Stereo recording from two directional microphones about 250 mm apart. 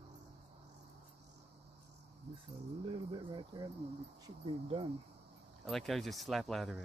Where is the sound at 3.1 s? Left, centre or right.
Centre.